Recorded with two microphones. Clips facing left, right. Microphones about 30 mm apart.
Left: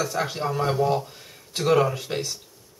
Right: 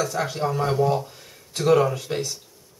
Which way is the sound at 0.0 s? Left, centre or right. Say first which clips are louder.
Right 1 dB; centre.